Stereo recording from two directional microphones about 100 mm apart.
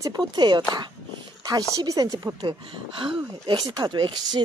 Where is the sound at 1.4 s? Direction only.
40° right (ahead or behind).